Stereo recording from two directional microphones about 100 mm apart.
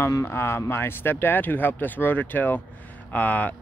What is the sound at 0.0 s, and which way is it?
Speech, 25° left (ahead or behind).